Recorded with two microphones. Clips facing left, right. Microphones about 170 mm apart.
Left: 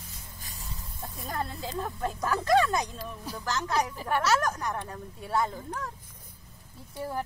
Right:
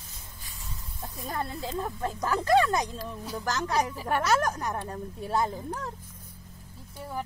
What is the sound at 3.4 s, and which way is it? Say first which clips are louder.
Speech: right 1 dB; 35° right (ahead or behind).